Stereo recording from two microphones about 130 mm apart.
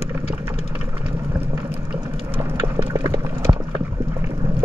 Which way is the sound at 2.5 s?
20° right (ahead or behind).